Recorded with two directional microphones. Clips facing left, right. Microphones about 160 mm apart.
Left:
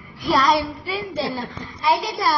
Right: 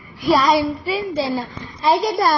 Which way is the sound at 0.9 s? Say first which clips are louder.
Right 4 dB; 15° right (ahead or behind).